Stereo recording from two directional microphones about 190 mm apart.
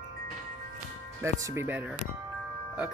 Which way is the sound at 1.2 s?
10° right (ahead or behind).